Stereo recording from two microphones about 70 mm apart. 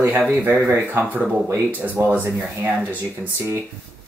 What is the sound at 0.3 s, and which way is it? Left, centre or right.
Speech, right.